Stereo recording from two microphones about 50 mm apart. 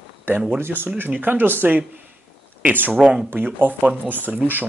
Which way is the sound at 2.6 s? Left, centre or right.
Right.